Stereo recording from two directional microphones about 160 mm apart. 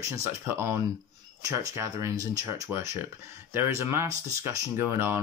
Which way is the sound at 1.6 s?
20° right (ahead or behind).